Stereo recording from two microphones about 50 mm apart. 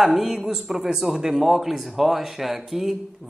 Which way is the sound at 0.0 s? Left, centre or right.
Centre.